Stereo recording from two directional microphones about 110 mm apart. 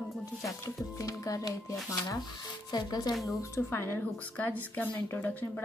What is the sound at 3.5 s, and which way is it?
A woman's voice, 25° left (ahead or behind).